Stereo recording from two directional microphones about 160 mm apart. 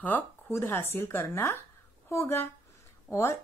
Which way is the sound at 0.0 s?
15° left (ahead or behind).